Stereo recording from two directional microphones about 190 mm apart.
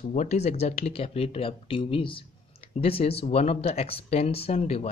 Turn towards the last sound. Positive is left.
turn(degrees=35)  # may be behind; listen again after turning